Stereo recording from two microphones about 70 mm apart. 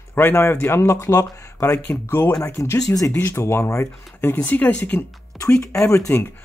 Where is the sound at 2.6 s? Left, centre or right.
Left.